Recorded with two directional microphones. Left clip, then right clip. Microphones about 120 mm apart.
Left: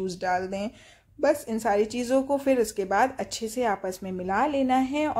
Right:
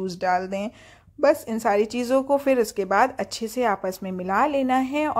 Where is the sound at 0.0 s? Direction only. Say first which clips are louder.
Right 4 dB; 35° right (ahead or behind).